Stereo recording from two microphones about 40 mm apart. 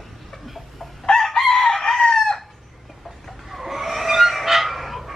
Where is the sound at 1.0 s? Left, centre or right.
Centre.